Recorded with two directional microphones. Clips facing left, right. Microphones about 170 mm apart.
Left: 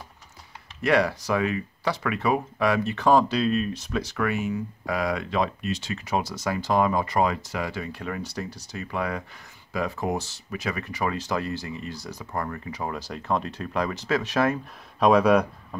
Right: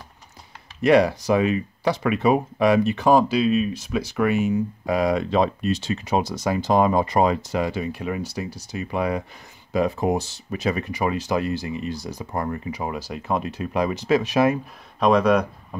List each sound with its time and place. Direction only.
0.8 s speech: 20° right (ahead or behind)
4.2 s speech: 20° right (ahead or behind)
15.0 s speech: 5° left (ahead or behind)
15.7 s a sound: 5° right (ahead or behind)